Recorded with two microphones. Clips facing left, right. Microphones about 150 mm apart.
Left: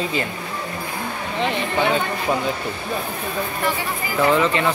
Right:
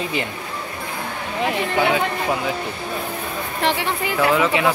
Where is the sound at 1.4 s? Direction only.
5° right (ahead or behind).